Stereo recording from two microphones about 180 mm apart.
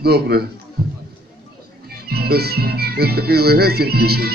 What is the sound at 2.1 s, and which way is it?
Music, 60° right (ahead or behind).